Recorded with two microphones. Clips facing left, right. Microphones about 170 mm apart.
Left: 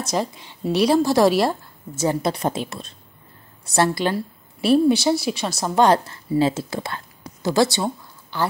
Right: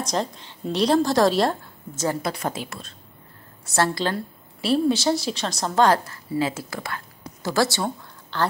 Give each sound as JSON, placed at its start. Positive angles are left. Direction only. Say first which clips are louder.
{"t": 0.0, "sound": "a woman's voice", "louder": "left 2 dB", "side_deg": 10}
{"t": 2.0, "sound": "a woman's voice", "louder": "left 4 dB", "side_deg": 20}
{"t": 5.9, "sound": "a woman's voice", "louder": "left 3 dB", "side_deg": 25}